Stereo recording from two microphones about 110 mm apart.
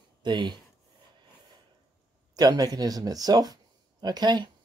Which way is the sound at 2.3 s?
35° right (ahead or behind).